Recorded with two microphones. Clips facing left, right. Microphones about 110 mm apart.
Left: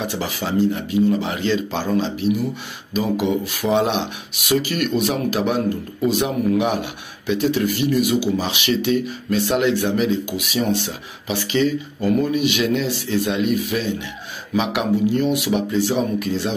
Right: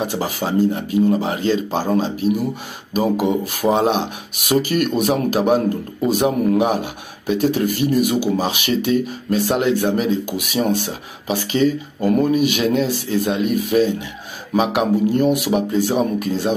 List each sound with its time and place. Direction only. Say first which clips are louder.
0.0 s speech: right 3 dB; 40° right (ahead or behind)